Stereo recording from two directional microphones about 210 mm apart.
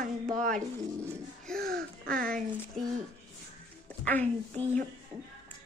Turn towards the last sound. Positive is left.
turn(degrees=10)  # may be behind; listen again after turning